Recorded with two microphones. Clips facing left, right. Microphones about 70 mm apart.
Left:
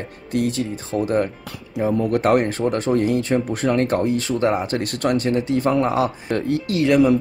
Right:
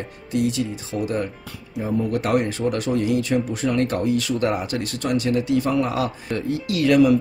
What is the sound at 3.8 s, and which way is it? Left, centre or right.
Speech, left.